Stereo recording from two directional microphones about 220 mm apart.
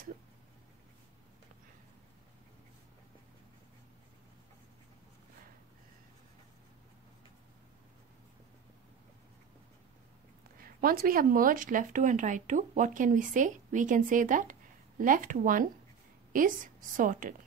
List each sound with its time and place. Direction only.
10.6 s speech: 40° right (ahead or behind)